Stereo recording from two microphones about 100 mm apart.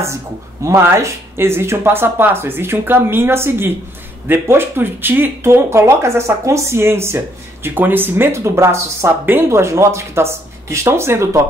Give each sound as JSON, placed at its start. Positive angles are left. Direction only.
{"t": 0.7, "sound": "speech", "side_deg": -25}